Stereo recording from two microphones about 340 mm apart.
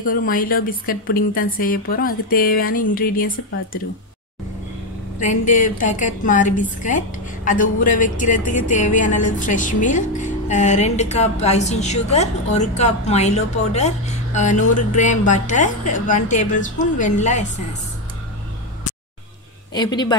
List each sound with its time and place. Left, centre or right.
0.0 s a woman's voice: left
5.2 s a woman's voice: left
19.7 s speech: centre